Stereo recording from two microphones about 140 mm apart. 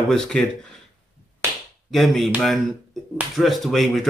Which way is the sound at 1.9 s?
Centre (ahead or behind).